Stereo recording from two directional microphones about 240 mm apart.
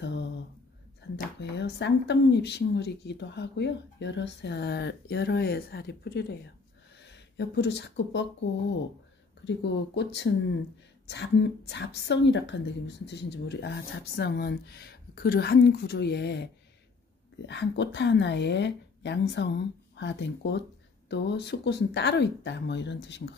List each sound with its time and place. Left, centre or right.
1.1 s speech: left
17.5 s speech: left